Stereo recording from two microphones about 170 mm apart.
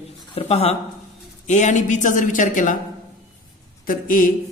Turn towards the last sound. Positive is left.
turn(degrees=55)  # may be behind; listen again after turning